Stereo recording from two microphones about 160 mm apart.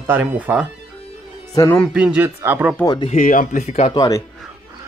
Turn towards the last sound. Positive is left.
turn(degrees=25)  # may be behind; listen again after turning